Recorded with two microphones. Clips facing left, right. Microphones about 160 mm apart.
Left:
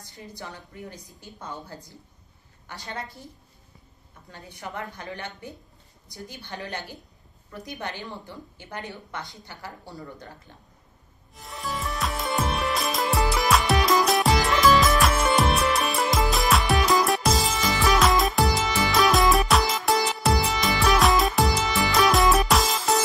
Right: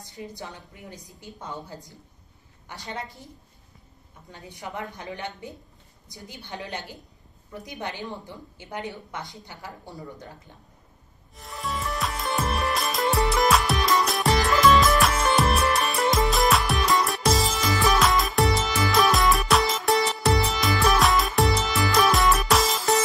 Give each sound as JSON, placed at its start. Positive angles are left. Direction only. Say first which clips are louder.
{"t": 0.0, "sound": "a woman's voice", "louder": "right 3 dB", "side_deg": -20}
{"t": 4.3, "sound": "a woman's voice", "louder": "even", "side_deg": -20}
{"t": 11.3, "sound": "music", "louder": "right 1 dB", "side_deg": 0}